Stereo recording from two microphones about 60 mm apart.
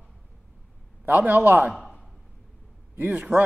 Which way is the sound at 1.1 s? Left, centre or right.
Right.